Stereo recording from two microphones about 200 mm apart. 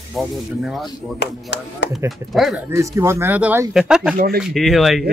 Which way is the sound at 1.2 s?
60° left (ahead or behind).